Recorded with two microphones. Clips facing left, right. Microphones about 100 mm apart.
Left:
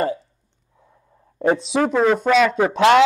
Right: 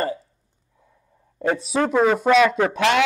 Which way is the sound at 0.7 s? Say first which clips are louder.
Left 4 dB; 40° left (ahead or behind).